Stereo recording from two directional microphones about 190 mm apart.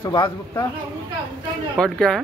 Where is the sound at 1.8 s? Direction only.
5° left (ahead or behind).